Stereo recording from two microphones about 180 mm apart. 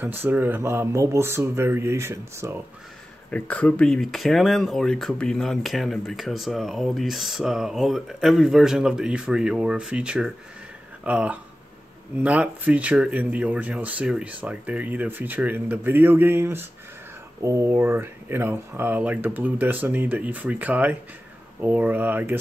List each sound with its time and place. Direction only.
0.0 s speech: 10° right (ahead or behind)
3.3 s speech: 5° left (ahead or behind); by 22.4 s 10° right (ahead or behind)